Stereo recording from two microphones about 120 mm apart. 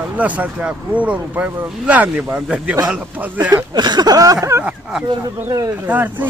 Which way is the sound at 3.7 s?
35° right (ahead or behind).